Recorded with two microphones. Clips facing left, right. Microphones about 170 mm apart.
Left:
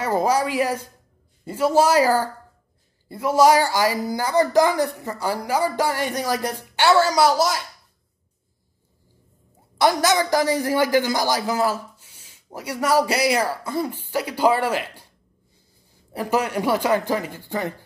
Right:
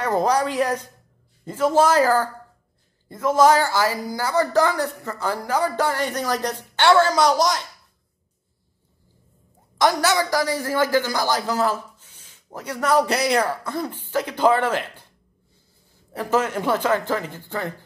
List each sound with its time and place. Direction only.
0.0 s a man's voice: 5° left (ahead or behind)
9.8 s a man's voice: 15° left (ahead or behind)
16.1 s a man's voice: 15° left (ahead or behind)